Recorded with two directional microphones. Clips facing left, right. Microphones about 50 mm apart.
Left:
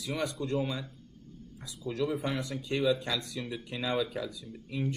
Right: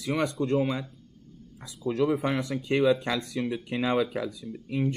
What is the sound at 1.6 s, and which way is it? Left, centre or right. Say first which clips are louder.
Speech: right 6 dB; right.